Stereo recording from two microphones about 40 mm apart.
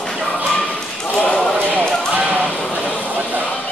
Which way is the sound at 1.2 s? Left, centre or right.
Left.